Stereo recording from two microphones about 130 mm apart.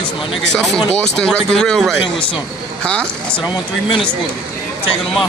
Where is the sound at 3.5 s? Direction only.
40° left (ahead or behind).